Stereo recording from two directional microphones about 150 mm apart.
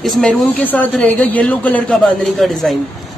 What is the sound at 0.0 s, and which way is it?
Speech, 5° left (ahead or behind).